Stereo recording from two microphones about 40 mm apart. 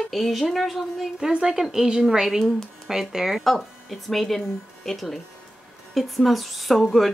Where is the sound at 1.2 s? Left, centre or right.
Centre.